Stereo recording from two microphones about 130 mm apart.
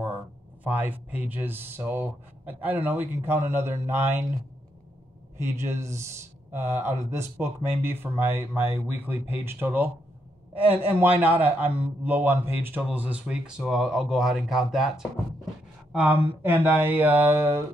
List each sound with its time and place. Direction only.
0.7 s speech: 15° right (ahead or behind)
5.4 s speech: 20° right (ahead or behind)
10.9 s speech: 15° right (ahead or behind)